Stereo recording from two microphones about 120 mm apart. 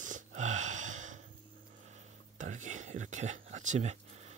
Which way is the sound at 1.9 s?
90° right.